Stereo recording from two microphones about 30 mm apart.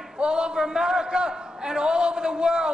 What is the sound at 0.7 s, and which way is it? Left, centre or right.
A man's voice, centre.